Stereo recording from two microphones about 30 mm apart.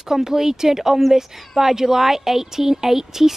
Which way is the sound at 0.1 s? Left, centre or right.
Centre.